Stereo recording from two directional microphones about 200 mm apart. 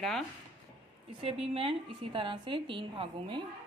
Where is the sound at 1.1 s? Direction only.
30° right (ahead or behind).